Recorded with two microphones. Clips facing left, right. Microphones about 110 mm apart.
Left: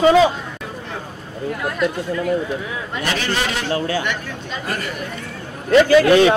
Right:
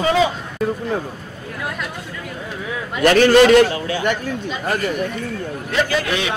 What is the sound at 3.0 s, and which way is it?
Speech, 55° right (ahead or behind).